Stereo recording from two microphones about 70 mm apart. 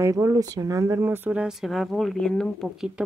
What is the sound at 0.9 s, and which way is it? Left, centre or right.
Speech, right.